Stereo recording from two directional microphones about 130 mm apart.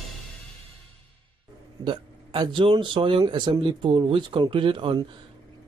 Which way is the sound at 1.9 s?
35° right (ahead or behind).